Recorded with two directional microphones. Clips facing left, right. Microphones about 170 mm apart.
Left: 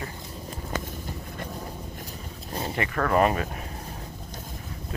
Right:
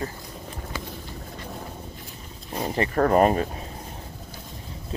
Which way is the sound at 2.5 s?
30° right (ahead or behind).